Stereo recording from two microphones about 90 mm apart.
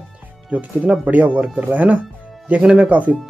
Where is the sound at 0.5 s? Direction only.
15° right (ahead or behind).